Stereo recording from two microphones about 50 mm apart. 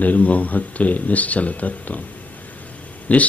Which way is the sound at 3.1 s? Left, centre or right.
Left.